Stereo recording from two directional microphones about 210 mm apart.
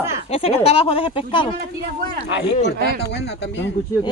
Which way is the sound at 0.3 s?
30° left (ahead or behind).